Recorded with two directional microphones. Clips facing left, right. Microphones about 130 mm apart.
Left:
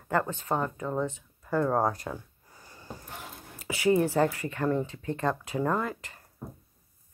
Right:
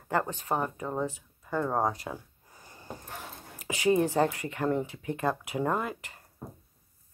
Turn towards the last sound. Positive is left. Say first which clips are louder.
# left 1 dB
turn(degrees=-15)  # may be behind; listen again after turning